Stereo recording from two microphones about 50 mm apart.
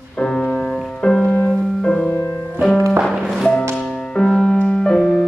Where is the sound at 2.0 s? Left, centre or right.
Left.